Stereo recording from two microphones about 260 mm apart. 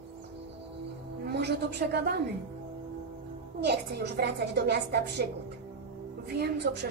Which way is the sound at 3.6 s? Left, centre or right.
Right.